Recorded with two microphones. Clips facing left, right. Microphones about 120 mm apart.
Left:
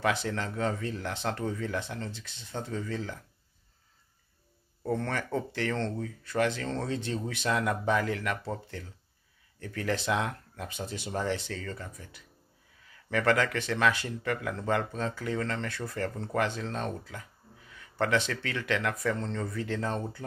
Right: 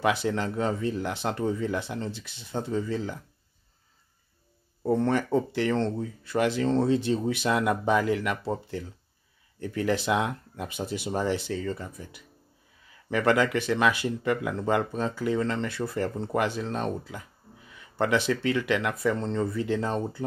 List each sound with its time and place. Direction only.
0.0 s speech: 10° right (ahead or behind)
4.8 s speech: 15° right (ahead or behind)